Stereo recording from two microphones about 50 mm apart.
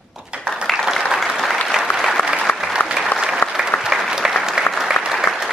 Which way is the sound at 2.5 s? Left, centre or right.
Left.